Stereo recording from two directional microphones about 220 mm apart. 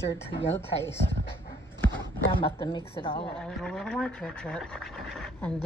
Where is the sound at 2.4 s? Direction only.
20° left (ahead or behind).